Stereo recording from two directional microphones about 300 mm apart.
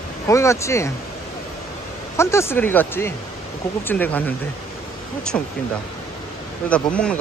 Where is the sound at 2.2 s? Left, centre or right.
Centre.